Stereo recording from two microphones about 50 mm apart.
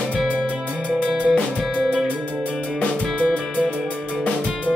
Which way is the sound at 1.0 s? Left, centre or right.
Right.